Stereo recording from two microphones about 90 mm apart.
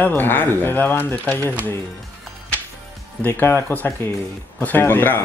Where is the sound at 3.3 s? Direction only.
25° left (ahead or behind).